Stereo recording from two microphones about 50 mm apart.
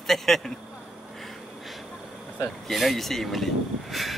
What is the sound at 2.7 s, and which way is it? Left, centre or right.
Speech, centre.